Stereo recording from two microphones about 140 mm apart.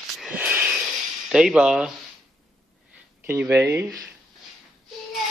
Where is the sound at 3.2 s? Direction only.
15° right (ahead or behind).